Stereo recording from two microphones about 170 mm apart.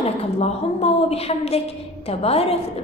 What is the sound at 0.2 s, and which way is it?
A woman's voice, 35° left (ahead or behind).